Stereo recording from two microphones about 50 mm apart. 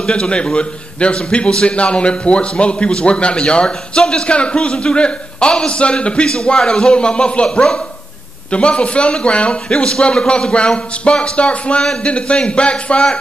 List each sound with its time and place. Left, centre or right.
0.1 s a man's voice: left